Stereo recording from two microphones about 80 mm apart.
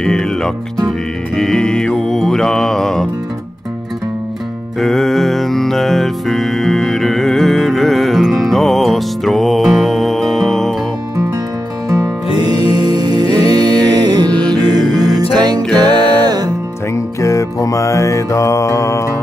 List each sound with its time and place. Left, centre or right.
0.0 s music: centre
4.7 s music: centre
12.4 s music: right
16.9 s music: left